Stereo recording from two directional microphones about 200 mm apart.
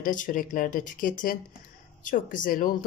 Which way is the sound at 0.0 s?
40° left (ahead or behind).